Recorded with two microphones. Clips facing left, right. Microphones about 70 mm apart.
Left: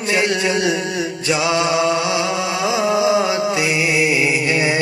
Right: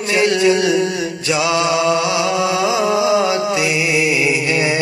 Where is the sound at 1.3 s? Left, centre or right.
Left.